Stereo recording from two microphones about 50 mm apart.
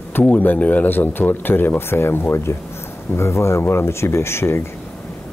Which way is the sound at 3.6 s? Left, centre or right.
Left.